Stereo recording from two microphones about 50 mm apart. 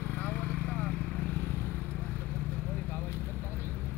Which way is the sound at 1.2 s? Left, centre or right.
Left.